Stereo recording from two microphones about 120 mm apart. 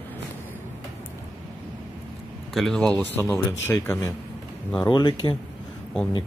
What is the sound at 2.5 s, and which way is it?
Speech, 5° left (ahead or behind).